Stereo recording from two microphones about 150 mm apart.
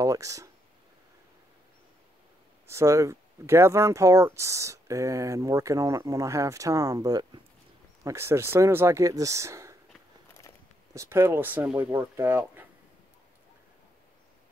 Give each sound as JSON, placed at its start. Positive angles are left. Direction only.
{"t": 0.0, "sound": "speech", "side_deg": -20}
{"t": 2.6, "sound": "speech", "side_deg": -20}
{"t": 11.0, "sound": "speech", "side_deg": -15}